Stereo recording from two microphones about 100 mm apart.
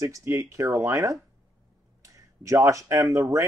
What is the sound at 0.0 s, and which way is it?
Speech, 30° right (ahead or behind).